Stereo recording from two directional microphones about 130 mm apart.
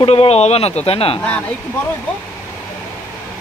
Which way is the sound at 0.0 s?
50° left (ahead or behind).